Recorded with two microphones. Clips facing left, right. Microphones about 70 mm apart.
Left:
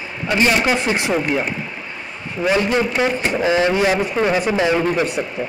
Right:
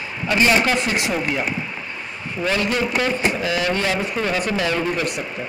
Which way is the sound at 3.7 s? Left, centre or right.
Centre.